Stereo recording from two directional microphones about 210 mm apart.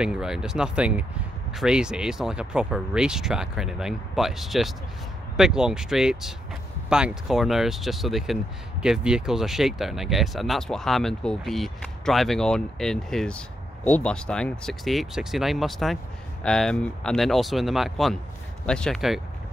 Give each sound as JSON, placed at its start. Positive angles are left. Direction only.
{"t": 0.0, "sound": "speech", "side_deg": -5}